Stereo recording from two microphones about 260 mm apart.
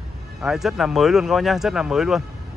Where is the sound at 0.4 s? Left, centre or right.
Centre.